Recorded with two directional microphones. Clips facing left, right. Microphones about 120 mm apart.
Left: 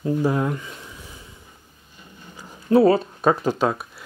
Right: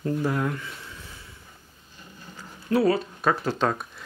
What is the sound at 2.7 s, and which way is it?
Speech, 25° left (ahead or behind).